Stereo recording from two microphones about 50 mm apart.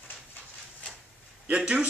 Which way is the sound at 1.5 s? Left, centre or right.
Right.